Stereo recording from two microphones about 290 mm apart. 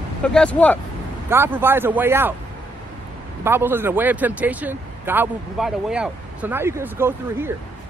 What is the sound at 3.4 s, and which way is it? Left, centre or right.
Speech, centre.